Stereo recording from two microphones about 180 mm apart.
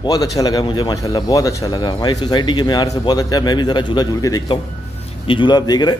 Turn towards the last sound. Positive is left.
turn(degrees=20)  # may be behind; listen again after turning